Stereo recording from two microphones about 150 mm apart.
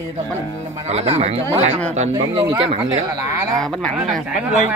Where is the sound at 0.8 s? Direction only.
45° right (ahead or behind).